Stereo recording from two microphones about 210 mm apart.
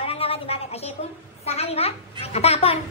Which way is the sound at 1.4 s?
30° left (ahead or behind).